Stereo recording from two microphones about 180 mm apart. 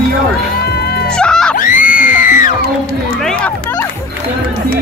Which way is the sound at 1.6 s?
50° left (ahead or behind).